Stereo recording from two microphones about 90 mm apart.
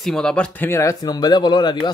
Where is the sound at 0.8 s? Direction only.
50° left (ahead or behind).